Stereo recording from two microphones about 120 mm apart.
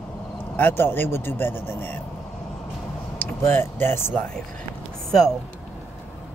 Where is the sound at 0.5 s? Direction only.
15° left (ahead or behind).